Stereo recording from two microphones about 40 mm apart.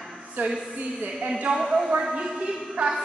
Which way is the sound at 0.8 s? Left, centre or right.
Right.